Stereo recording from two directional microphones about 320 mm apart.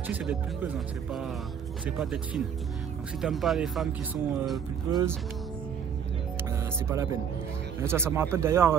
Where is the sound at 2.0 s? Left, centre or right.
Centre.